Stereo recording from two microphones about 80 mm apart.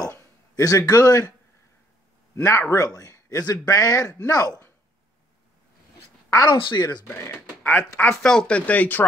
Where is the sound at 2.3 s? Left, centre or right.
Left.